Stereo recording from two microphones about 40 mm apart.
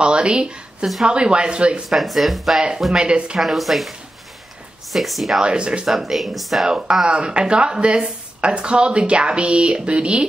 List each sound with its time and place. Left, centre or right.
0.0 s speech: right
1.9 s speech: centre
2.9 s speech: right
3.3 s speech: centre
4.9 s speech: centre
5.4 s speech: right
5.9 s speech: centre
6.6 s speech: centre